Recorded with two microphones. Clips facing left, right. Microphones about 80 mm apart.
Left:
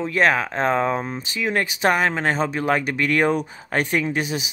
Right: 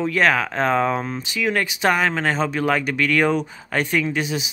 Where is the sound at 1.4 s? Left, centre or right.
Left.